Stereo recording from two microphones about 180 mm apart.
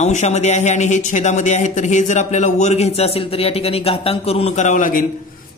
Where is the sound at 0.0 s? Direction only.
40° left (ahead or behind).